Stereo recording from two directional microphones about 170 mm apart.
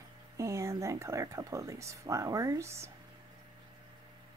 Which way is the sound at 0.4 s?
15° right (ahead or behind).